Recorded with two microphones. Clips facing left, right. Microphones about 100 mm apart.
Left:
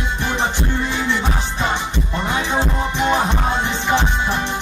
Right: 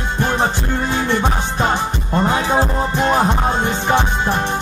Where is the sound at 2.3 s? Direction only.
40° right (ahead or behind).